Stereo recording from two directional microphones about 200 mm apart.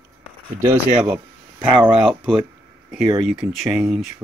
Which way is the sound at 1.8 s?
Centre (ahead or behind).